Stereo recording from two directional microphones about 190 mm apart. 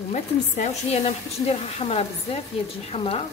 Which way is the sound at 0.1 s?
35° left (ahead or behind).